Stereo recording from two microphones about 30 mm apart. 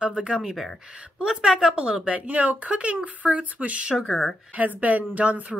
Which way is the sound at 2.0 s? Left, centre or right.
Right.